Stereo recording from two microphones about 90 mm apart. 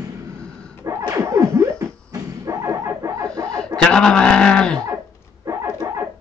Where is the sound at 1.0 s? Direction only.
35° right (ahead or behind).